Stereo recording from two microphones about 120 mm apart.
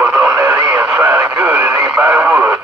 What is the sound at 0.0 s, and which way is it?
Radio, 20° right (ahead or behind).